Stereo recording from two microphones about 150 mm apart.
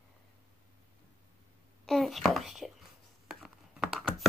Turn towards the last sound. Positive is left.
turn(degrees=0)  # may be behind; listen again after turning